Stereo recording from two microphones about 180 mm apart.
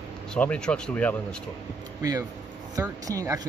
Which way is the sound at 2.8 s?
20° right (ahead or behind).